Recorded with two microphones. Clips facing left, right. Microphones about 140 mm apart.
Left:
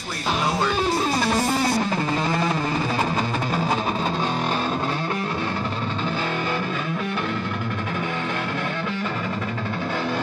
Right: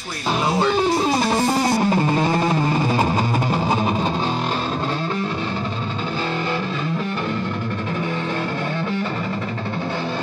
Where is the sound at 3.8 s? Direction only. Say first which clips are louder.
Right 3 dB; 5° right (ahead or behind).